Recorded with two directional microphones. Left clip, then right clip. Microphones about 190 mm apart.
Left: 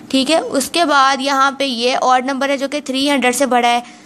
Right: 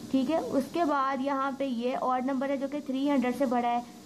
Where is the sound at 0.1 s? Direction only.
25° left (ahead or behind).